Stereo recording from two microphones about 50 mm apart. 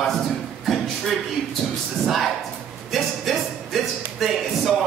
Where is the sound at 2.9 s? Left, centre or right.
Centre.